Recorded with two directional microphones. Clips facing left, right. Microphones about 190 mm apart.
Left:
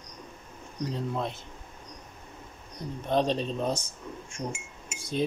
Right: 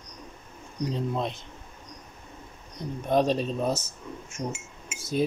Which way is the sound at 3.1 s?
10° right (ahead or behind).